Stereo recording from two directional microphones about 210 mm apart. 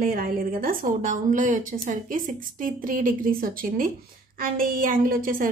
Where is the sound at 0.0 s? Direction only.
45° right (ahead or behind).